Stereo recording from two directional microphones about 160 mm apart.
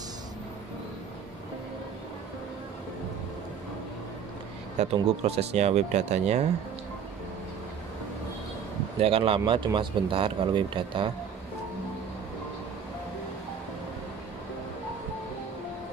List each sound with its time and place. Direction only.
4.8 s speech: 45° right (ahead or behind)
9.0 s speech: 35° right (ahead or behind)